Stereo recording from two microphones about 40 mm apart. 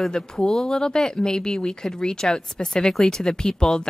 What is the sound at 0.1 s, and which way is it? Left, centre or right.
A woman's voice, centre.